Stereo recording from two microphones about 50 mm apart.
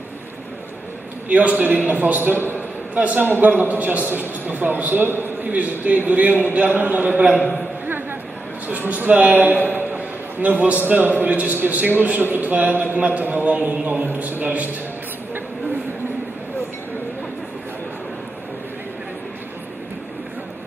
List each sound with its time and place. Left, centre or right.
1.3 s a man's voice: right
2.5 s a sound: right
3.3 s a man's voice: right
5.5 s a man's voice: right
7.8 s chatter: right
8.6 s a man's voice: right